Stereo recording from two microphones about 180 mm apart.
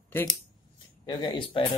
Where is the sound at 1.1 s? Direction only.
25° left (ahead or behind).